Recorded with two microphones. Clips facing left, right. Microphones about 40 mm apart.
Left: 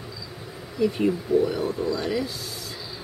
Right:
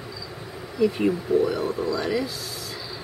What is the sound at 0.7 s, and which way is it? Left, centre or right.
Speech, centre.